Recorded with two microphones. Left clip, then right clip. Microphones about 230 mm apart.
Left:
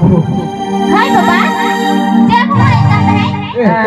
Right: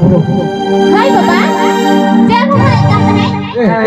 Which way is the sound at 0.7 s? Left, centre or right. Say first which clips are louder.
Right 1 dB; left.